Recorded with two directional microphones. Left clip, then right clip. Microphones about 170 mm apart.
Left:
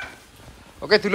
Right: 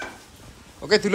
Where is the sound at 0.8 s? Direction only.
10° right (ahead or behind).